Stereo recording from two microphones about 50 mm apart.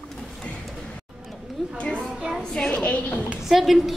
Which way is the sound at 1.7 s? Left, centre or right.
Centre.